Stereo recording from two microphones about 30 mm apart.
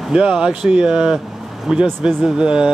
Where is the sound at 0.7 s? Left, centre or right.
Right.